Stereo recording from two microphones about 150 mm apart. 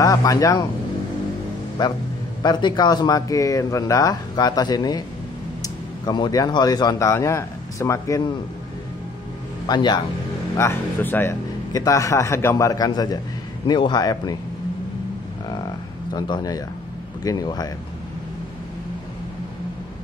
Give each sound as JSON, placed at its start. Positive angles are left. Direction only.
{"t": 0.0, "sound": "speech", "side_deg": 25}
{"t": 2.4, "sound": "a man's voice", "side_deg": 30}
{"t": 9.7, "sound": "speech", "side_deg": 30}
{"t": 10.6, "sound": "speech", "side_deg": 15}
{"t": 16.1, "sound": "speech", "side_deg": 25}